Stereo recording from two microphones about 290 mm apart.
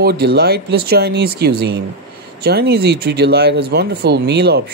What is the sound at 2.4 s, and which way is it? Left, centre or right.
Speech, right.